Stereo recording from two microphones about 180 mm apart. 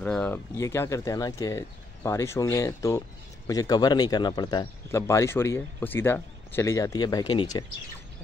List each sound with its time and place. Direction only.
0.0 s a man's voice: 10° left (ahead or behind); by 7.6 s 25° left (ahead or behind)